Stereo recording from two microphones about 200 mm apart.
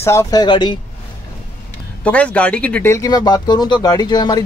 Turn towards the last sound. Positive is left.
turn(degrees=20)  # may be behind; listen again after turning